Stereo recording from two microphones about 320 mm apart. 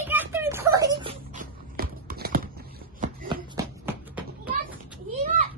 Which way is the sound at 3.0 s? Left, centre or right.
Right.